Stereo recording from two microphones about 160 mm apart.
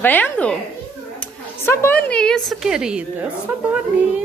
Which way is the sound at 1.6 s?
15° left (ahead or behind).